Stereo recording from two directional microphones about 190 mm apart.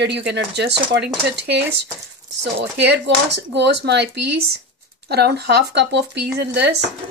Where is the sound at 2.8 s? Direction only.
65° right (ahead or behind).